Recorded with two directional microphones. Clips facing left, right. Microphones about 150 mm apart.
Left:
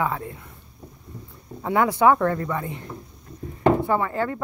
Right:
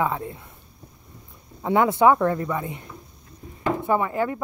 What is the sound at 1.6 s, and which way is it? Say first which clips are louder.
Speech: right 1 dB; 20° right (ahead or behind).